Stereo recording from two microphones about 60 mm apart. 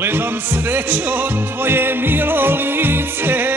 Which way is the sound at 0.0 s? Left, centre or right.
Right.